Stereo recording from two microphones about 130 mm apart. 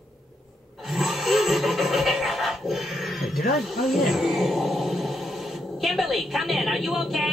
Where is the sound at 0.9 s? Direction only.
Centre (ahead or behind).